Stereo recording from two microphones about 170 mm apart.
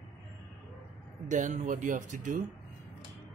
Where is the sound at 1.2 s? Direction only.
45° right (ahead or behind).